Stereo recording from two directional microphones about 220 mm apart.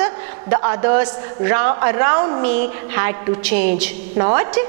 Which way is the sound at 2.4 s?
10° right (ahead or behind).